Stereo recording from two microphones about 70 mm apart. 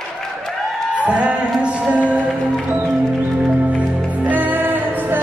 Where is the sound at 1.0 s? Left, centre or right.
Centre.